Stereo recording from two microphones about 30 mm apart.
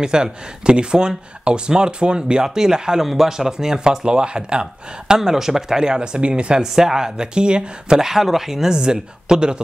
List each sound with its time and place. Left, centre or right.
0.0 s speech: right
2.4 s speech: centre
3.0 s speech: centre; by 5.1 s right
5.1 s speech: centre
5.9 s speech: right
6.6 s speech: centre
7.3 s speech: right
8.0 s speech: centre
8.7 s speech: right